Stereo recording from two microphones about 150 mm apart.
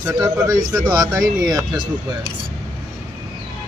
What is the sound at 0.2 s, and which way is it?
Speech, 25° right (ahead or behind).